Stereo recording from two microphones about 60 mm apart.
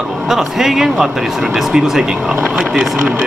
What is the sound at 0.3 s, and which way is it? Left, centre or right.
Speech, centre.